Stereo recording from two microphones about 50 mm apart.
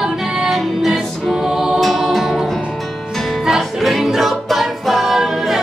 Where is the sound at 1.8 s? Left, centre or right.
Centre.